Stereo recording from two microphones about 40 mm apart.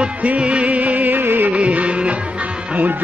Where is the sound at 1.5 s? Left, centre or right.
Right.